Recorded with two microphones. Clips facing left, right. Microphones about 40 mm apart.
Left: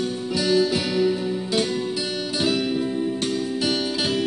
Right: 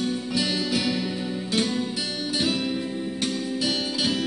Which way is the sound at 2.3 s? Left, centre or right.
Left.